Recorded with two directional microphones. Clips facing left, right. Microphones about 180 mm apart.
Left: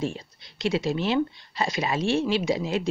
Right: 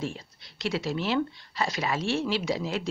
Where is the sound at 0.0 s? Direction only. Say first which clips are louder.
Left 4 dB; 20° left (ahead or behind).